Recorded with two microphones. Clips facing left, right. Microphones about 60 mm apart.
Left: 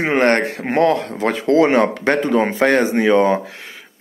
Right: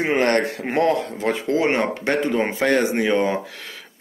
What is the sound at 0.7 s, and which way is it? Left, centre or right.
Speech, left.